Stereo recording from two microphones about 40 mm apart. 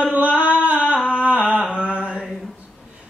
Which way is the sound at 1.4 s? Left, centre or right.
Right.